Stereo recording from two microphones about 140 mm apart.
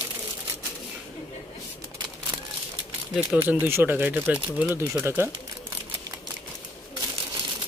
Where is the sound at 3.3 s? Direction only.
5° right (ahead or behind).